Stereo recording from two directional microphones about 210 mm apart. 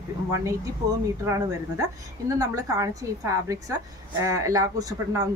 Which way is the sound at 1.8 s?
15° right (ahead or behind).